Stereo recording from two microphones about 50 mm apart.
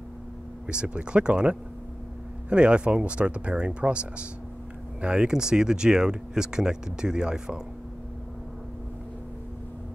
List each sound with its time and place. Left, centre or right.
0.7 s speech: centre